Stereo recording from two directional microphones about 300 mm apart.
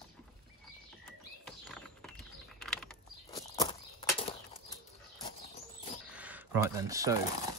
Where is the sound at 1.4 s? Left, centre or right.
Centre.